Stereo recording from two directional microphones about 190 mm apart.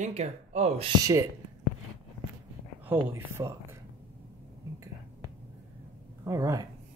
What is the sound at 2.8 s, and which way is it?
Speech, 10° right (ahead or behind).